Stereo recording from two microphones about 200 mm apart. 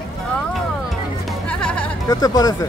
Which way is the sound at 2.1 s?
20° left (ahead or behind).